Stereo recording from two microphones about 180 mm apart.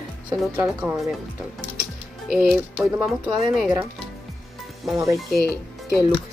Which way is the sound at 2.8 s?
20° right (ahead or behind).